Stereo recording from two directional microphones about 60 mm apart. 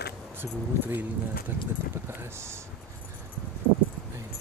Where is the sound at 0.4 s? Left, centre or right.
Right.